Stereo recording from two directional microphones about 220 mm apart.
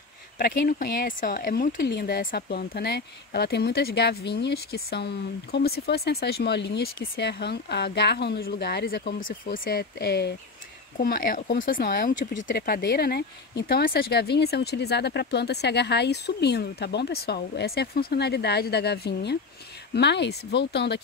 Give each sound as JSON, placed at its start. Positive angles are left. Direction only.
{"t": 0.4, "sound": "speech", "side_deg": 40}